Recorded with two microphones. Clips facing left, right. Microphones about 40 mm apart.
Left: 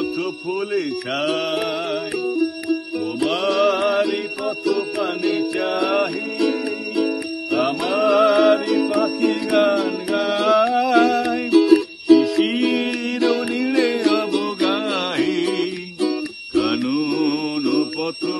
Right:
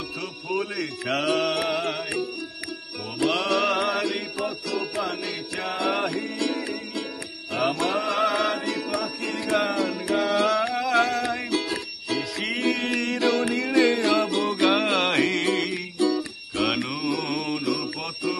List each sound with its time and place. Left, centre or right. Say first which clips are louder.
0.2 s music: left 5 dB; left
11.1 s music: left 7 dB; right
12.1 s music: left 14 dB; left
13.0 s music: left 3 dB; right
16.5 s mantra: left 7 dB; right